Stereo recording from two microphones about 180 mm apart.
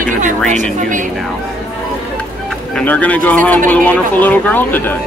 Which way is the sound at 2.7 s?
10° left (ahead or behind).